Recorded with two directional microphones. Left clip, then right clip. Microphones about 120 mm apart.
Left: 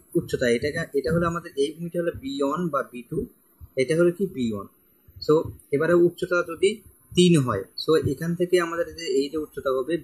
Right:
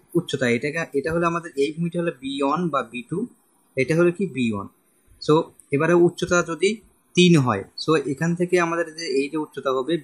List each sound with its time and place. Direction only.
0.1 s speech: 45° right (ahead or behind)
6.1 s speech: 55° right (ahead or behind); by 10.0 s 40° right (ahead or behind)